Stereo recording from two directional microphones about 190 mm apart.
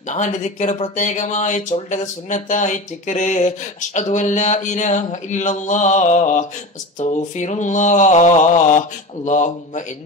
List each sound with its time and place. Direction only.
0.1 s speech: 40° left (ahead or behind)